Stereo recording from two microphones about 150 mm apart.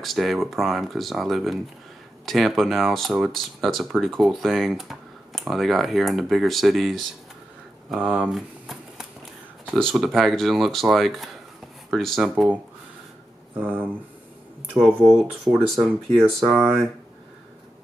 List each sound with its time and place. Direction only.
0.0 s speech: centre (ahead or behind)
13.6 s speech: 10° right (ahead or behind)
14.8 s speech: 5° left (ahead or behind)